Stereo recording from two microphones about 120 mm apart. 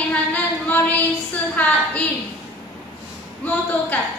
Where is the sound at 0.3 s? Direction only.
15° left (ahead or behind).